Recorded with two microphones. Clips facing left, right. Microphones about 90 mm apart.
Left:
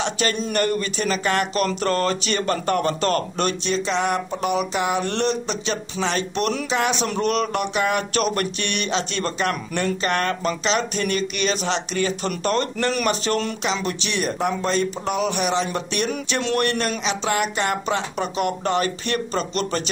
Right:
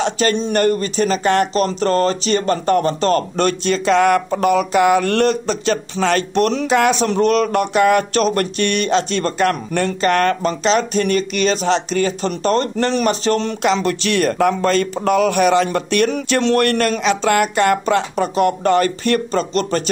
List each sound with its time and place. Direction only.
0.0 s speech: 40° right (ahead or behind)
6.7 s speech: 50° right (ahead or behind); by 13.6 s 35° right (ahead or behind)
13.7 s speech: 60° right (ahead or behind); by 19.8 s 40° right (ahead or behind)